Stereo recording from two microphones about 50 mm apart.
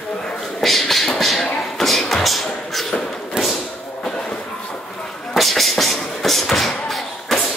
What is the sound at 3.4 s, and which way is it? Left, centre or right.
Thump, centre.